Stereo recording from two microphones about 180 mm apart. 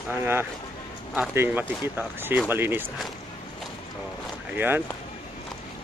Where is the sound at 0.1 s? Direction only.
10° right (ahead or behind).